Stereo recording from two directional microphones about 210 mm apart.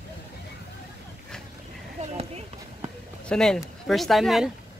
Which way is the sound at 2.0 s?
30° right (ahead or behind).